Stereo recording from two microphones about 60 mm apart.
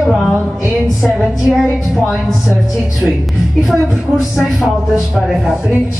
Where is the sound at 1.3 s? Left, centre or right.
Centre.